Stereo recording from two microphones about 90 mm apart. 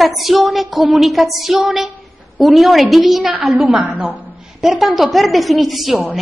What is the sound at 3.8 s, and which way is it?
Speech, 15° right (ahead or behind).